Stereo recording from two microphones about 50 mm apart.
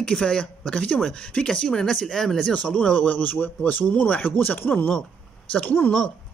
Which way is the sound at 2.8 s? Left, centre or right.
Left.